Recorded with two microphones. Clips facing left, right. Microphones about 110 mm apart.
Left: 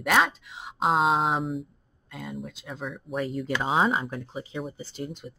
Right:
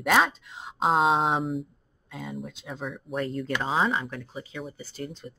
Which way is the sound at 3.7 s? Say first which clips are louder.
Left 2 dB; 25° left (ahead or behind).